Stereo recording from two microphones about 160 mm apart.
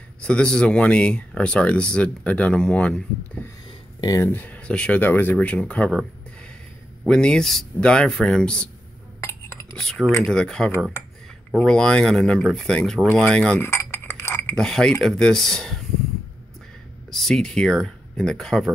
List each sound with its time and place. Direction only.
0.2 s speech: 5° left (ahead or behind)
7.1 s speech: 5° left (ahead or behind)
9.2 s dishes: 20° left (ahead or behind)
9.8 s speech: 5° left (ahead or behind)
13.6 s cutlery: 15° left (ahead or behind)
14.5 s speech: 5° left (ahead or behind)
17.1 s speech: centre (ahead or behind)